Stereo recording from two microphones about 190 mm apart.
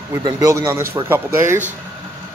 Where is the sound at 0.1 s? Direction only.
20° right (ahead or behind).